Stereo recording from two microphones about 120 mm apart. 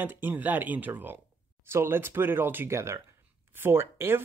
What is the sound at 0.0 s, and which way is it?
Speech, 15° right (ahead or behind).